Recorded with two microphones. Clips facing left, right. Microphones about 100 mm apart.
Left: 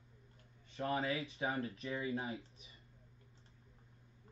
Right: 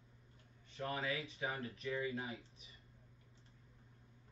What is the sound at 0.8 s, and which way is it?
Speech, 35° left (ahead or behind).